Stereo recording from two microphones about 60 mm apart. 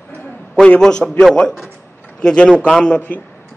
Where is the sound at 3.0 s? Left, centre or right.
Left.